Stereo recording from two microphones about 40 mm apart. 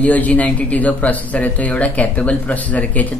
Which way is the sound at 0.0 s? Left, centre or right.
Left.